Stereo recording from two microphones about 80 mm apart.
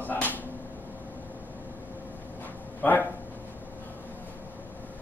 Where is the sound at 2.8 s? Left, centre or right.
Left.